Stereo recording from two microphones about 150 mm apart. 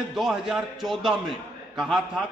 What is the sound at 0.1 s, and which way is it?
A man's voice, centre (ahead or behind).